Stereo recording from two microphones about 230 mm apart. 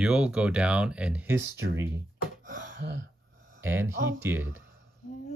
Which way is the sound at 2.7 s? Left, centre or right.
Right.